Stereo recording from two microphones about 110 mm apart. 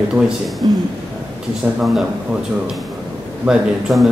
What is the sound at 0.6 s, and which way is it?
Speech, 50° right (ahead or behind).